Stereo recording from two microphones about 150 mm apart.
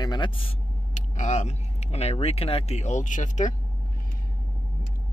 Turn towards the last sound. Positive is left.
turn(degrees=55)  # may be behind; listen again after turning